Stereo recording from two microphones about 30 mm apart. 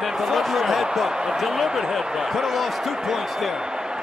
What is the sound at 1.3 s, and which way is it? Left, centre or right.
Speech, centre.